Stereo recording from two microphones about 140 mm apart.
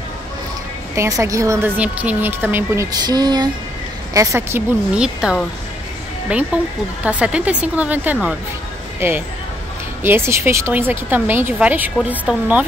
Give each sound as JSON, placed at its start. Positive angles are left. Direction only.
{"t": 0.9, "sound": "a woman's voice", "side_deg": -20}
{"t": 1.8, "sound": "a woman's voice", "side_deg": -10}
{"t": 4.9, "sound": "speech", "side_deg": -5}